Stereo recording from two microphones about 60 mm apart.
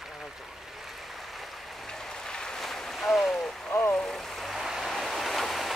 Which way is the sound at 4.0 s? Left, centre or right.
Centre.